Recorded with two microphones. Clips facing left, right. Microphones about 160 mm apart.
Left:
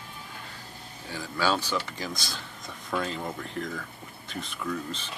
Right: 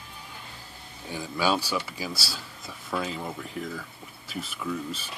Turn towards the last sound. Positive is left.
turn(degrees=-10)  # may be behind; listen again after turning